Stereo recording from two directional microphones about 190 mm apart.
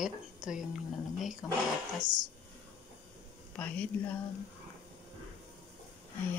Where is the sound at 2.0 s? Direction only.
20° right (ahead or behind).